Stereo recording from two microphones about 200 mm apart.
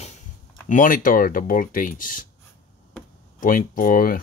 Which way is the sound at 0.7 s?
40° left (ahead or behind).